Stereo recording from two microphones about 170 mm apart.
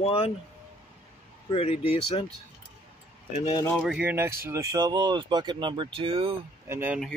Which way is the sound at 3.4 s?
25° left (ahead or behind).